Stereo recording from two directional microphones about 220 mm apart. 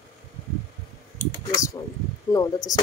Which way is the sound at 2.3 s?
15° left (ahead or behind).